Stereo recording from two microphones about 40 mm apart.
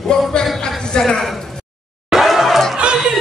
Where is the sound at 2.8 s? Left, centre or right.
Right.